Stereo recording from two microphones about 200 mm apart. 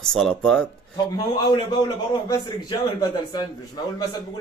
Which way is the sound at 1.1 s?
20° left (ahead or behind).